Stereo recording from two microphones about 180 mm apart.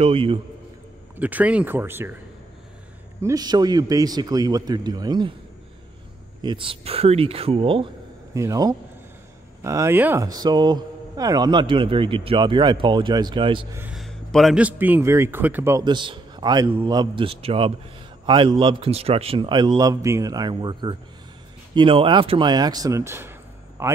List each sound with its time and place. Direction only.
0.0 s speech: 30° right (ahead or behind)
1.1 s a man's voice: 10° right (ahead or behind)
3.2 s speech: 20° right (ahead or behind)
6.4 s speech: 30° right (ahead or behind)
13.7 s a man's voice: 5° right (ahead or behind)